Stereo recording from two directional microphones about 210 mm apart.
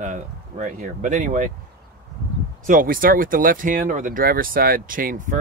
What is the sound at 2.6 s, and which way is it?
Speech, 40° right (ahead or behind).